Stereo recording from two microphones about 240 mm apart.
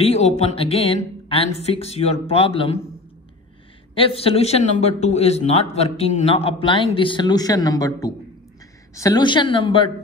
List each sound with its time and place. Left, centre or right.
0.0 s a man's voice: left
3.9 s a man's voice: left